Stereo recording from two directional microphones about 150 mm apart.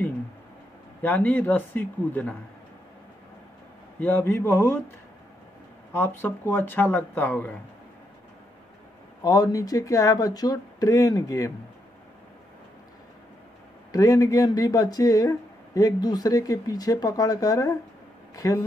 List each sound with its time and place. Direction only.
1.0 s speech: 10° left (ahead or behind)
4.0 s speech: 15° left (ahead or behind)
5.9 s speech: 15° left (ahead or behind)
9.2 s speech: 25° left (ahead or behind)
13.9 s speech: 25° left (ahead or behind)